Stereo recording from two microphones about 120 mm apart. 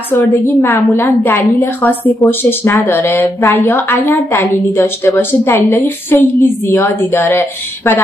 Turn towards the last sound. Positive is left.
turn(degrees=20)  # may be behind; listen again after turning